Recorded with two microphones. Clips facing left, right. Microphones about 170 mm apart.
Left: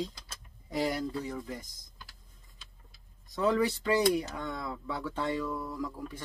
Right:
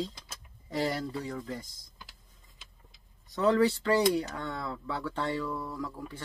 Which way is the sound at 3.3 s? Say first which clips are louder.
Right 2 dB; 5° left (ahead or behind).